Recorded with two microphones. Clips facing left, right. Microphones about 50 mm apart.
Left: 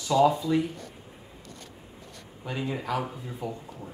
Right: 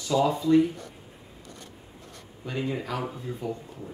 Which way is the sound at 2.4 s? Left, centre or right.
Centre.